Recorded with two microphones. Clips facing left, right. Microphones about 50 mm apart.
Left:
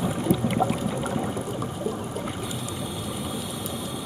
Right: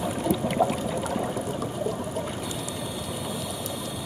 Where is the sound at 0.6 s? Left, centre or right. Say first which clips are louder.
Right 5 dB; left.